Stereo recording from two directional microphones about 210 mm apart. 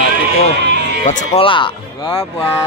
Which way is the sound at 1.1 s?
25° left (ahead or behind).